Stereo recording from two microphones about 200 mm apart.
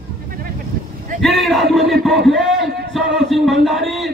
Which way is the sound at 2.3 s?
Centre (ahead or behind).